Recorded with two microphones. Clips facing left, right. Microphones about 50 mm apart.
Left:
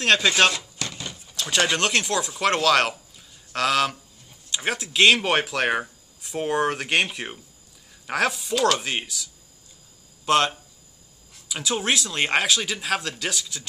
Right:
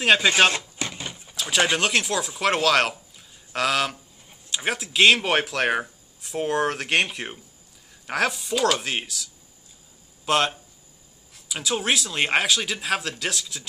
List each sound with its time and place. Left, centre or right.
0.0 s speech: centre
0.5 s a sound: right
1.3 s speech: centre